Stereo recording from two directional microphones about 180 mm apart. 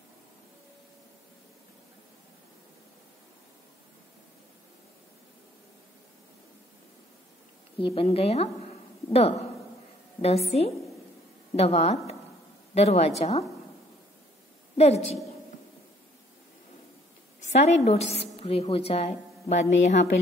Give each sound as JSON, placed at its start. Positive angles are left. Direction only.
{"t": 7.8, "sound": "a woman's voice", "side_deg": 30}
{"t": 10.2, "sound": "a woman's voice", "side_deg": 35}
{"t": 14.8, "sound": "a woman's voice", "side_deg": 35}
{"t": 17.5, "sound": "a woman's voice", "side_deg": 40}